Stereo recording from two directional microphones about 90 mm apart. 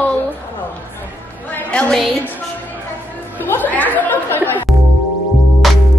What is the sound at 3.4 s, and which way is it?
Speech, 20° left (ahead or behind).